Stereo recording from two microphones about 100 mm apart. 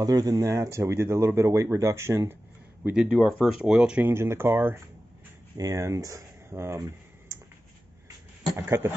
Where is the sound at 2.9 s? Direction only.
5° right (ahead or behind).